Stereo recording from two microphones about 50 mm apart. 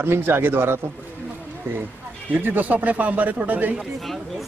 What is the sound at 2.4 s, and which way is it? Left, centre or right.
Speech, right.